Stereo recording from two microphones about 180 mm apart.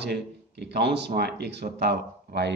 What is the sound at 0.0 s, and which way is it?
A man's voice, 70° right (ahead or behind).